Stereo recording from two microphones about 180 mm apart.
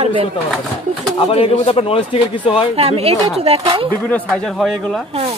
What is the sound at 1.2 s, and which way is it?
A man's voice, 30° left (ahead or behind).